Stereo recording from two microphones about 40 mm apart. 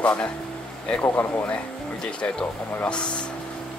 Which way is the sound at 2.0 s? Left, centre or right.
Left.